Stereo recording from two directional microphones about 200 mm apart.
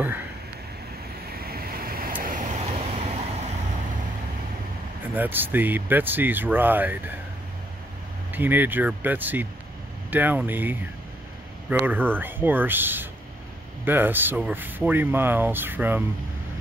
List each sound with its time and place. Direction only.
1.3 s vehicle: 50° right (ahead or behind)
5.1 s speech: 10° right (ahead or behind)
8.3 s speech: 10° right (ahead or behind)
11.8 s speech: 10° right (ahead or behind)